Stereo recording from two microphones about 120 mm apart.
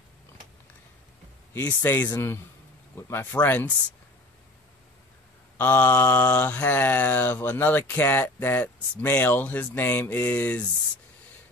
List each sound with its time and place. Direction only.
1.5 s a man's voice: 20° left (ahead or behind)
5.6 s speech: 20° left (ahead or behind)